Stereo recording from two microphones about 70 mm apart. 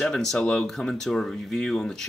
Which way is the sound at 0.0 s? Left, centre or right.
Centre.